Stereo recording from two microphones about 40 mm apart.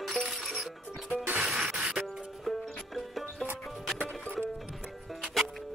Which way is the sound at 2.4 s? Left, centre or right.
Centre.